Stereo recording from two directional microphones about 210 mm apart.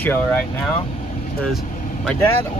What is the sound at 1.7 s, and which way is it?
Vehicle, 40° left (ahead or behind).